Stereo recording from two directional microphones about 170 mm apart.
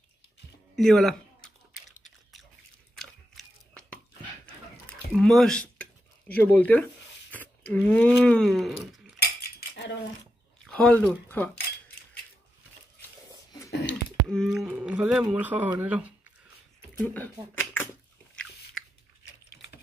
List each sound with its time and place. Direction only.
0.7 s a sound: centre (ahead or behind)
3.0 s biting: 5° left (ahead or behind)
5.1 s speech: 5° left (ahead or behind)
9.2 s dog: 75° left (ahead or behind)
10.6 s speech: 5° left (ahead or behind)
13.8 s a sound: 5° left (ahead or behind)
15.3 s speech: 10° right (ahead or behind)
17.0 s speech: 10° left (ahead or behind)
18.3 s biting: 5° left (ahead or behind)